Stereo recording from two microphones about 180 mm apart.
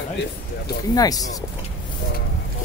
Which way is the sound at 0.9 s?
20° left (ahead or behind).